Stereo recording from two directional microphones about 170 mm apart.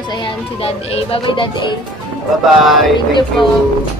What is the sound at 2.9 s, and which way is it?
Speech, 25° left (ahead or behind).